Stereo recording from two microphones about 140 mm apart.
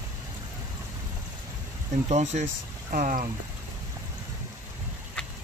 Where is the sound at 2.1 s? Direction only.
60° right (ahead or behind).